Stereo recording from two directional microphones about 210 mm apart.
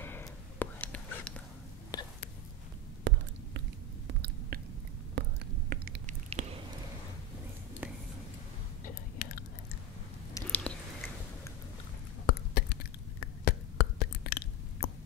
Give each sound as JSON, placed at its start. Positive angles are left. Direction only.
{"t": 0.0, "sound": "whispering", "side_deg": 10}
{"t": 1.9, "sound": "whispering", "side_deg": 20}
{"t": 3.0, "sound": "a sound", "side_deg": -60}
{"t": 4.1, "sound": "chewing", "side_deg": -50}
{"t": 5.2, "sound": "whispering", "side_deg": -55}
{"t": 5.7, "sound": "chewing", "side_deg": -45}
{"t": 6.4, "sound": "a sound", "side_deg": -35}
{"t": 8.8, "sound": "chewing", "side_deg": 45}
{"t": 10.3, "sound": "chewing", "side_deg": 10}
{"t": 12.3, "sound": "a sound", "side_deg": 50}